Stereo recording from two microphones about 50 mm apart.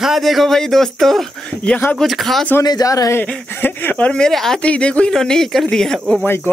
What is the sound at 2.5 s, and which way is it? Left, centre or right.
Speech, left.